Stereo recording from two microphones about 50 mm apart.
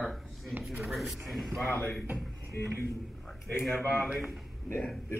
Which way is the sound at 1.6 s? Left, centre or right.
Left.